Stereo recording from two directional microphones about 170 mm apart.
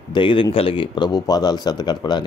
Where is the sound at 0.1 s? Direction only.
30° left (ahead or behind).